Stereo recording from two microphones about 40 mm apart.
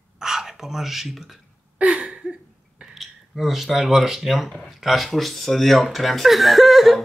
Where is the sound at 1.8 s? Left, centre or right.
Right.